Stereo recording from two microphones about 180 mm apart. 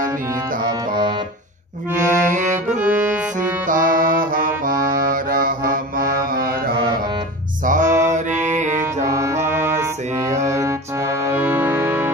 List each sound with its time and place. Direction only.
0.7 s music: 25° right (ahead or behind)
2.2 s music: 45° right (ahead or behind)
2.8 s music: 10° right (ahead or behind)
3.6 s music: 50° right (ahead or behind)
7.6 s music: 45° right (ahead or behind)
9.0 s music: 15° right (ahead or behind)